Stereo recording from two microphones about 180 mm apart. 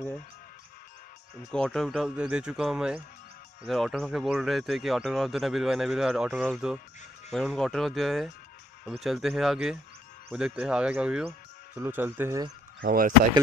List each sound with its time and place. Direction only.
1.5 s a man's voice: 5° left (ahead or behind); by 12.4 s 15° right (ahead or behind)
12.8 s speech: 55° right (ahead or behind)